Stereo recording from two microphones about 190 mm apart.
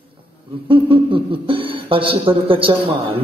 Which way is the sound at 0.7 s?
30° right (ahead or behind).